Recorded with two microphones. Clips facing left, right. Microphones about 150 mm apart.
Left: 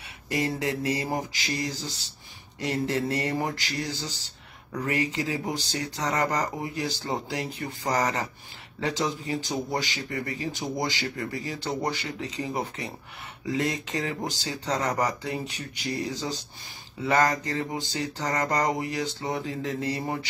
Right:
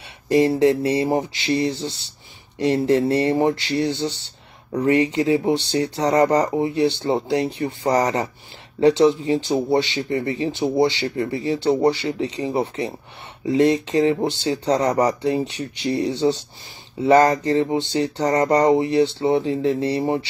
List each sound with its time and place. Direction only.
0.3 s speech: 30° right (ahead or behind)